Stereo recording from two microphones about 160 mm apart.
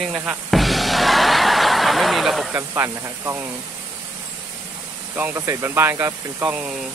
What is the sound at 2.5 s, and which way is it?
Speech, 15° right (ahead or behind).